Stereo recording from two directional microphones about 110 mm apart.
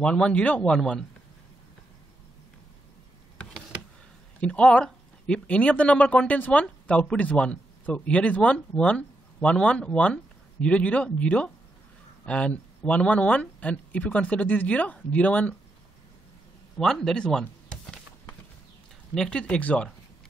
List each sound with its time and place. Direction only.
0.0 s speech: 10° left (ahead or behind)
4.4 s speech: 10° left (ahead or behind)
16.7 s a sound: 5° left (ahead or behind)
19.1 s speech: 5° left (ahead or behind)